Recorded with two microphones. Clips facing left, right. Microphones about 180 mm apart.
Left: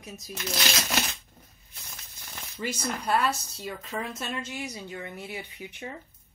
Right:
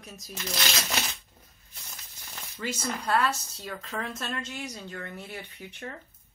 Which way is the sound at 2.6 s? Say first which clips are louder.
Left 1 dB; 15° left (ahead or behind).